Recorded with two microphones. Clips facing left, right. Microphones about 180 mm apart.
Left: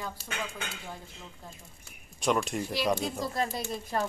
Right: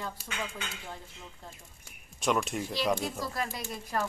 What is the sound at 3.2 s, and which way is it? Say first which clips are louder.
Speech: left 4 dB; 25° left (ahead or behind).